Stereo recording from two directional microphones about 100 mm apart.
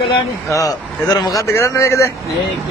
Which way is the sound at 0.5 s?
40° left (ahead or behind).